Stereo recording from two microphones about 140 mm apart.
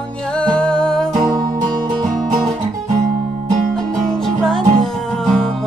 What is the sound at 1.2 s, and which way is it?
Music, 30° right (ahead or behind).